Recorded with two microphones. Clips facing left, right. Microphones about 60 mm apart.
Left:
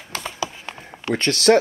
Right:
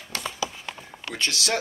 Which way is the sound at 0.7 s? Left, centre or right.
Left.